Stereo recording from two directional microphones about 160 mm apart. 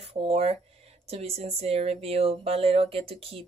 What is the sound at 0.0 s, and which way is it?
Speech, 40° right (ahead or behind).